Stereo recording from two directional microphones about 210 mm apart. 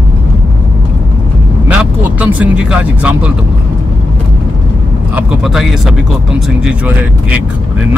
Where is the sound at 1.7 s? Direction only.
5° right (ahead or behind).